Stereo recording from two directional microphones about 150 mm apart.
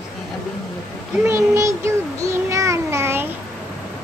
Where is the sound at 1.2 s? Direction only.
20° right (ahead or behind).